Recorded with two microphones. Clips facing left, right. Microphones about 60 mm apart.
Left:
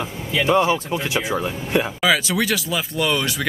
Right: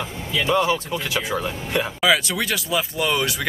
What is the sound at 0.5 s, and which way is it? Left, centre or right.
Speech, left.